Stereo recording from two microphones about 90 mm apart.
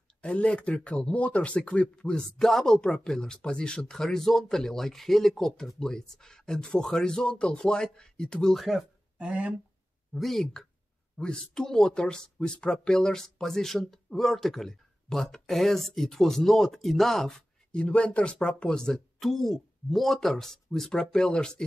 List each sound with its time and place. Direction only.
0.2 s speech: 15° left (ahead or behind)
9.2 s speech: 15° right (ahead or behind)
10.1 s speech: 5° left (ahead or behind)